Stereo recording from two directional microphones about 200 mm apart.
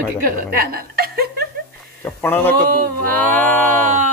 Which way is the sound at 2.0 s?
10° left (ahead or behind).